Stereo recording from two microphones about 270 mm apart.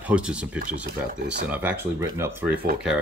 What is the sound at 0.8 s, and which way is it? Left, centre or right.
Speech, right.